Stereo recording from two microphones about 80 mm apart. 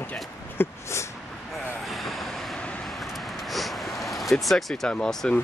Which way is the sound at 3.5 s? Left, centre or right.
Centre.